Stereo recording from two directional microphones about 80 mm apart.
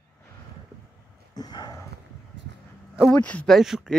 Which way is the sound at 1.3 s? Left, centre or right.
Left.